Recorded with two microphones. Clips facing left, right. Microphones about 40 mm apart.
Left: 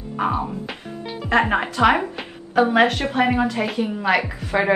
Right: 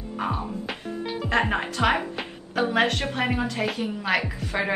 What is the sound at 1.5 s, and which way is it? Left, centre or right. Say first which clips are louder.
Speech: left 6 dB; centre.